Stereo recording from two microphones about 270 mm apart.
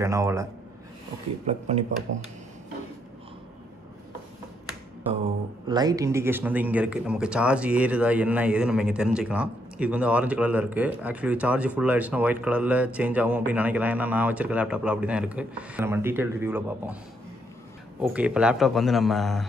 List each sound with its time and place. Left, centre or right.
0.0 s a man's voice: centre
1.4 s speech: right
5.2 s speech: centre
18.0 s speech: centre